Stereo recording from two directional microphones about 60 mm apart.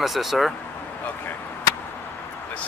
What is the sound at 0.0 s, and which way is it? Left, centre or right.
Speech, centre.